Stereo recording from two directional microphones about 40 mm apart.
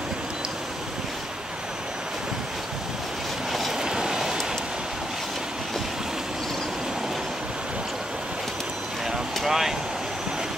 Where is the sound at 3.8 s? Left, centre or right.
Centre.